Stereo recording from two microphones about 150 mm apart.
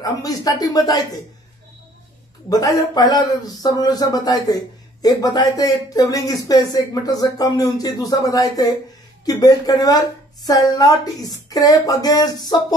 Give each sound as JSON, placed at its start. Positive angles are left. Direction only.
{"t": 0.0, "sound": "speech", "side_deg": 25}
{"t": 2.5, "sound": "speech", "side_deg": 25}